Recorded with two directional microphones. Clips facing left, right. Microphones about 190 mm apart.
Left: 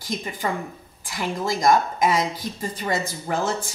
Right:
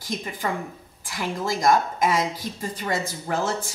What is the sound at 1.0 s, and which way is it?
A woman's voice, 20° left (ahead or behind).